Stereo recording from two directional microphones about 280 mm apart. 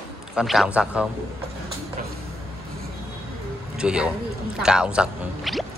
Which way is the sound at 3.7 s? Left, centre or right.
Centre.